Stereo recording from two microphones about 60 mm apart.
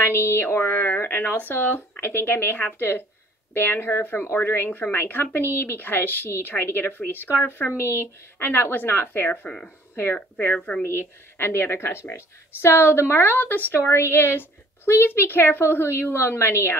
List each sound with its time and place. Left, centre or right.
0.0 s a woman's voice: left
10.8 s a woman's voice: left